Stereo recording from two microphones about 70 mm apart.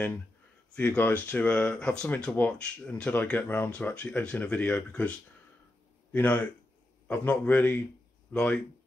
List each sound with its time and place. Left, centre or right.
0.7 s speech: left
6.1 s speech: centre